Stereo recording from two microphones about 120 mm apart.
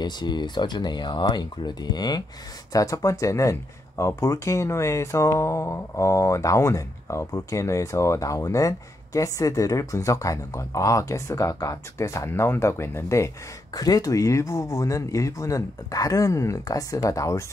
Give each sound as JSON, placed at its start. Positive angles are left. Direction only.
{"t": 0.0, "sound": "speech", "side_deg": 35}